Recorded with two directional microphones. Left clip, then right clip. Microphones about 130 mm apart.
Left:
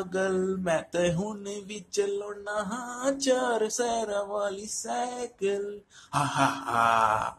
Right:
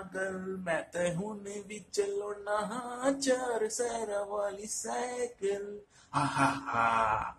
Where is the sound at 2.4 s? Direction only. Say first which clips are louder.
Left 1 dB; 20° left (ahead or behind).